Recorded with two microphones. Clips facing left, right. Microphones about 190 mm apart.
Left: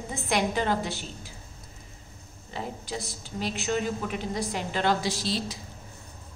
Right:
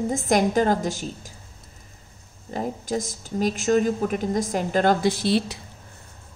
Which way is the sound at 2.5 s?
45° right (ahead or behind).